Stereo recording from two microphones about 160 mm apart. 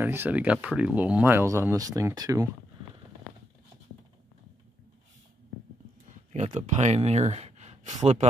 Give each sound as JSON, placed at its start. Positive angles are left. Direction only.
{"t": 0.0, "sound": "speech", "side_deg": -10}
{"t": 6.3, "sound": "speech", "side_deg": -45}